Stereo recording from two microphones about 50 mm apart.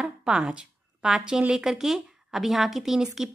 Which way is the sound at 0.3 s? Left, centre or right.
Centre.